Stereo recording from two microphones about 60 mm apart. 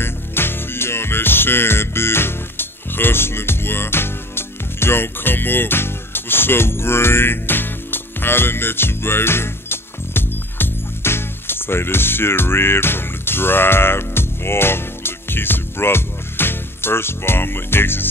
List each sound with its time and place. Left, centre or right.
0.0 s music: left